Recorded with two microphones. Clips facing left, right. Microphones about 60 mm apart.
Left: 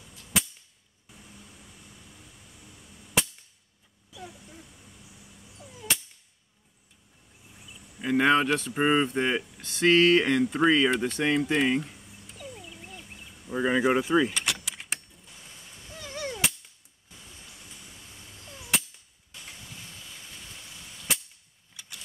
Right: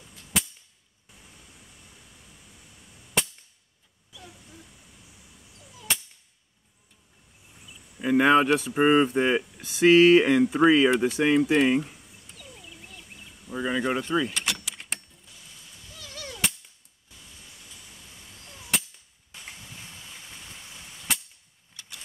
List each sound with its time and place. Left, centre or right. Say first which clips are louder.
0.3 s cap gun: even; centre
3.2 s cap gun: even; centre
5.9 s a sound: even; centre
8.0 s speech: right 3 dB; centre
12.6 s a sound: left 2 dB; centre
13.5 s speech: left 3 dB; centre
14.3 s vehicle: even; centre
15.9 s gunshot: left 6 dB; left
18.6 s cap gun: even; centre
21.1 s cap gun: right 1 dB; centre
21.7 s vehicle: even; centre